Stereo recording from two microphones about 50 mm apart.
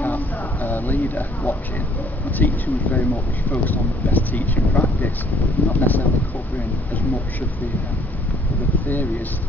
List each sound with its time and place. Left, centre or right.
0.0 s a sound: left
2.3 s speech: left
8.8 s speech: left